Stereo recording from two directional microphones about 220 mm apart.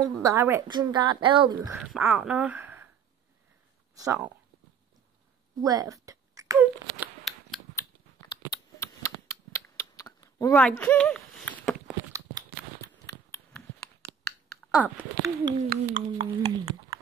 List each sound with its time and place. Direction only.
0.0 s a woman's voice: 15° right (ahead or behind)
1.6 s speech: 5° right (ahead or behind)
4.0 s speech: 10° right (ahead or behind)
5.6 s speech: 15° right (ahead or behind)
7.3 s scissors: centre (ahead or behind)
7.7 s a sound: 15° left (ahead or behind)
13.7 s a sound: 5° left (ahead or behind)
15.5 s speech: 35° right (ahead or behind)
16.2 s speech: 25° right (ahead or behind)